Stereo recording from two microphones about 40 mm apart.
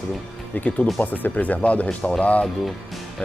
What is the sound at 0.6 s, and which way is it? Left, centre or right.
Speech, left.